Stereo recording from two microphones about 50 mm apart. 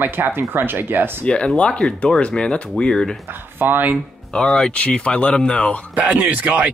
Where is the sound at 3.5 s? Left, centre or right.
Right.